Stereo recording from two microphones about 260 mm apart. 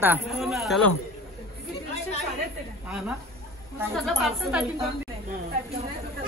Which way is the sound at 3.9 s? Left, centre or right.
Centre.